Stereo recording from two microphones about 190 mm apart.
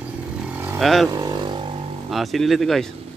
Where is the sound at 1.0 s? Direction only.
20° right (ahead or behind).